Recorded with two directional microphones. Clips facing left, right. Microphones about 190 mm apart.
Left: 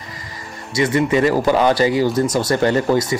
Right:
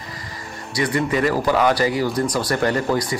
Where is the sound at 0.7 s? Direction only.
25° left (ahead or behind).